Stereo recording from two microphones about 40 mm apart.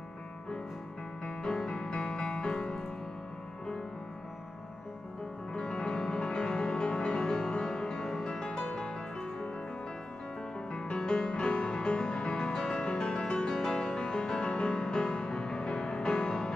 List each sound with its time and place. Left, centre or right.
1.2 s music: centre
5.5 s music: left
10.7 s music: left